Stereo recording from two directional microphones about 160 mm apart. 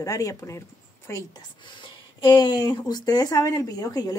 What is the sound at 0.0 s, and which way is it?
Speech, 20° left (ahead or behind).